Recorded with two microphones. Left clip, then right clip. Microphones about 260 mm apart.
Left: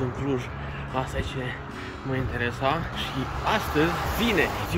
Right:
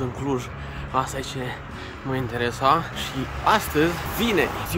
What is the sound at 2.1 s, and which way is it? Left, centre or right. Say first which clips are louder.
Speech: right 3 dB; right.